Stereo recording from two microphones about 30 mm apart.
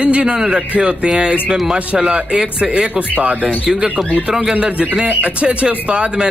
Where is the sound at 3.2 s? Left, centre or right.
Right.